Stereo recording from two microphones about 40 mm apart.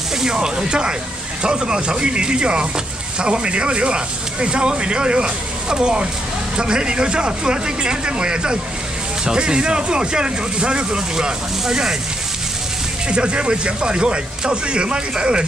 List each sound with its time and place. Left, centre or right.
0.2 s speech: centre
13.1 s speech: right